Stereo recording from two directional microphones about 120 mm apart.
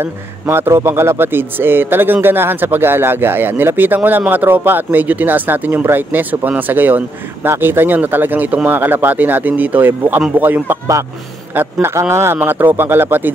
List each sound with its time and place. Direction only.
0.0 s speech: 20° right (ahead or behind)